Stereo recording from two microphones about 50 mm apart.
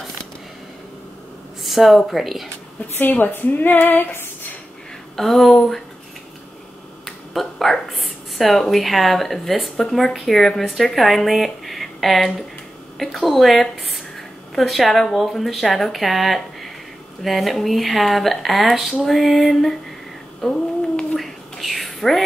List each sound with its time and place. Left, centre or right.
1.6 s a sound: centre
2.0 s speech: centre
3.0 s female singing: left
5.1 s speech: centre
7.1 s speech: centre
21.2 s whispering: centre